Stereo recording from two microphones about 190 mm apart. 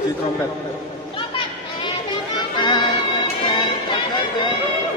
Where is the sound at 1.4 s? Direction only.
25° left (ahead or behind).